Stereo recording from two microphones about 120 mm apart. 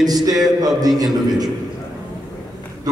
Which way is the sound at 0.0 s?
30° right (ahead or behind).